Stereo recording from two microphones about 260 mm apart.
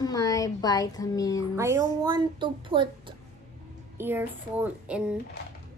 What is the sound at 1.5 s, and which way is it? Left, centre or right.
Speech, centre.